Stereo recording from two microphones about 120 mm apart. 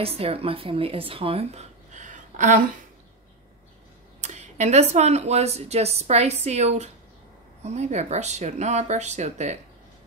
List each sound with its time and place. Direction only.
0.0 s speech: 55° right (ahead or behind); by 2.8 s 90° right
4.2 s speech: 85° right